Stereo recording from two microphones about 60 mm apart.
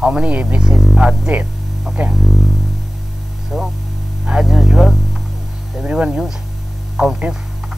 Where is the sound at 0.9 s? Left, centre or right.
Centre.